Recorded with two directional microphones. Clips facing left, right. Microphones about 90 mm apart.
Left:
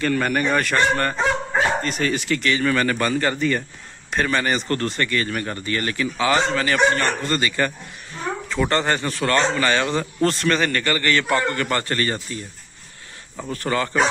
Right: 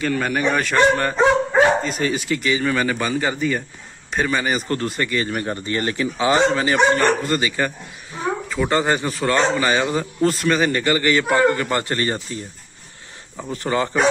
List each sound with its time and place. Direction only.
0.0 s speech: 5° right (ahead or behind); by 12.4 s 25° right (ahead or behind)
13.5 s speech: 20° right (ahead or behind)